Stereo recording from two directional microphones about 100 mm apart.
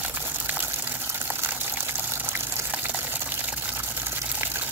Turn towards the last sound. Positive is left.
turn(degrees=-20)  # may be behind; listen again after turning